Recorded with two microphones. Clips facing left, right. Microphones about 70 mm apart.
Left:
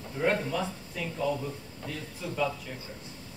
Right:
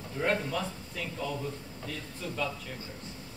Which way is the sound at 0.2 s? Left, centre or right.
Centre.